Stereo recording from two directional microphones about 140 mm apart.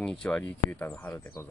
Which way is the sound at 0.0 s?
5° left (ahead or behind).